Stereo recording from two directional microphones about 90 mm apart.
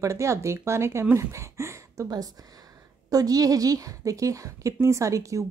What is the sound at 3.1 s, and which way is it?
A woman's voice, 45° right (ahead or behind).